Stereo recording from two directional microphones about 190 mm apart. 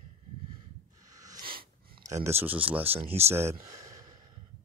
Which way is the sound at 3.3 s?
15° right (ahead or behind).